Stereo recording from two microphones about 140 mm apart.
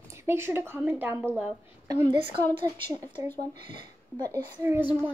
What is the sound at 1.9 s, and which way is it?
Speech, 35° right (ahead or behind).